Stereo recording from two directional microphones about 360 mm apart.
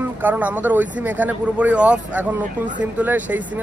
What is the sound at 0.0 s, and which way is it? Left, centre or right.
Speech, centre.